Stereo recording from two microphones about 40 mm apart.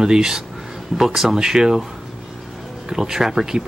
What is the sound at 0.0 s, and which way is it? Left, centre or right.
Speech, centre.